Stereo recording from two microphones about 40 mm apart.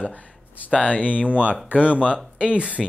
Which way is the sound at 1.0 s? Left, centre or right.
Right.